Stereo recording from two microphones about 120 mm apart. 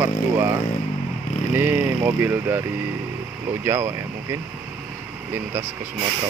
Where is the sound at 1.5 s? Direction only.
15° right (ahead or behind).